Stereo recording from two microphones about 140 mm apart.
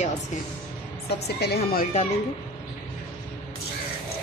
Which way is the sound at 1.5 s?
90° left.